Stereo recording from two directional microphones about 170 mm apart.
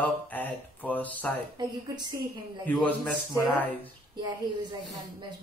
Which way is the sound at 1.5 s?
25° right (ahead or behind).